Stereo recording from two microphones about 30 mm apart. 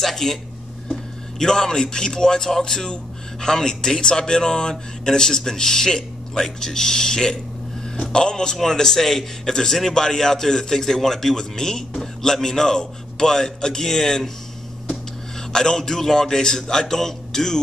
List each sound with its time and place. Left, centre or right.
0.0 s a man's voice: centre
1.4 s speech: left
8.6 s a man's voice: centre
9.8 s a man's voice: left
15.5 s a man's voice: left